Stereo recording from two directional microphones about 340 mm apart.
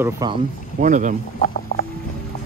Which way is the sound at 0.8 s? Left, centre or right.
Right.